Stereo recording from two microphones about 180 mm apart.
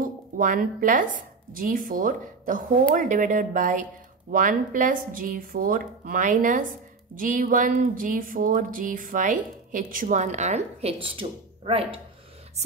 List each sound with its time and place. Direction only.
0.0 s speech: 50° right (ahead or behind); by 12.0 s 30° right (ahead or behind)